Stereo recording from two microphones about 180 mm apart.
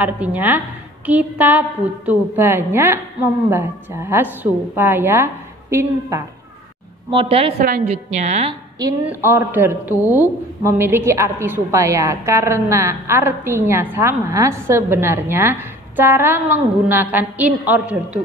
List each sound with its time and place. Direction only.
0.0 s a woman's voice: 10° right (ahead or behind)
7.1 s a woman's voice: 30° right (ahead or behind)
7.5 s a woman's voice: 50° right (ahead or behind)
7.8 s a woman's voice: 40° right (ahead or behind)
8.7 s a woman's voice: 15° right (ahead or behind)